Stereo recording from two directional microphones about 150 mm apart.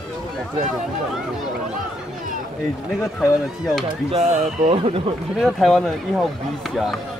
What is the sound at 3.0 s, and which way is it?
Speech, centre (ahead or behind).